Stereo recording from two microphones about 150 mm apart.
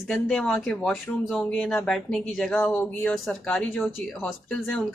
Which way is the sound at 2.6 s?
15° left (ahead or behind).